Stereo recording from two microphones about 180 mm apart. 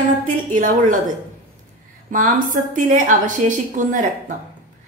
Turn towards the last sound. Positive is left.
turn(degrees=-45)  # may be behind; listen again after turning